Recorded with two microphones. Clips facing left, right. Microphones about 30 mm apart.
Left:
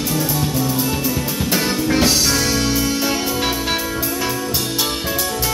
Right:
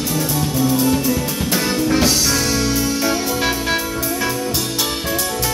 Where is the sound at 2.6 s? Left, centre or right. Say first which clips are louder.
Even; left.